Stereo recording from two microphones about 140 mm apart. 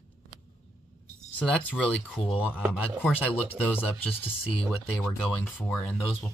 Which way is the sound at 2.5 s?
5° right (ahead or behind).